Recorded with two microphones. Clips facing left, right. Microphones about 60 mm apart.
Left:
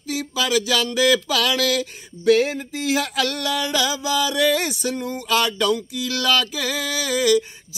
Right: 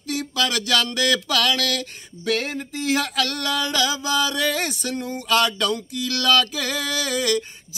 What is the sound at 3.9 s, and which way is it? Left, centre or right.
Music, right.